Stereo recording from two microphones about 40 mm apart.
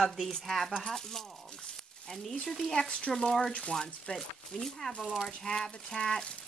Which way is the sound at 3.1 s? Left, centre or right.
Centre.